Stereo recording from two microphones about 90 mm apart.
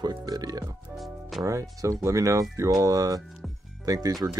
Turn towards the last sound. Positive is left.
turn(degrees=-40)  # may be behind; listen again after turning